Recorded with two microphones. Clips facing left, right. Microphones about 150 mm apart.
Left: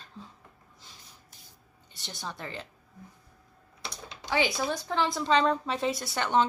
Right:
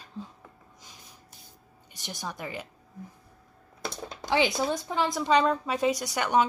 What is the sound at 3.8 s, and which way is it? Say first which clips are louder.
Typing: right 6 dB; 45° right (ahead or behind).